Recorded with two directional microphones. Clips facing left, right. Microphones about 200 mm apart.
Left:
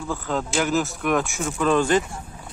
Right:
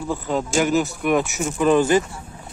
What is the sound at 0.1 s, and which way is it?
Speech, 10° right (ahead or behind).